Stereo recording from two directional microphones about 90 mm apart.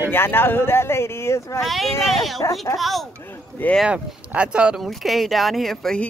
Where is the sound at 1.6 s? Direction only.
Centre (ahead or behind).